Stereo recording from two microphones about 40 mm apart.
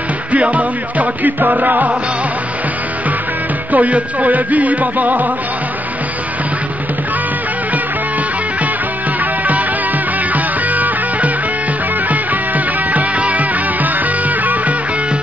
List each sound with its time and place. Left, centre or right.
0.3 s music: right
3.7 s music: right
9.2 s music: right